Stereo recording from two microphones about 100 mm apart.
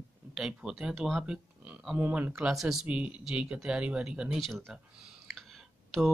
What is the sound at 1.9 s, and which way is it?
Speech, 15° right (ahead or behind).